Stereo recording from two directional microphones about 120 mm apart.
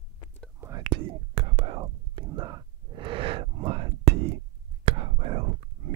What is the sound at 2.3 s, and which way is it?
Whispering, 35° right (ahead or behind).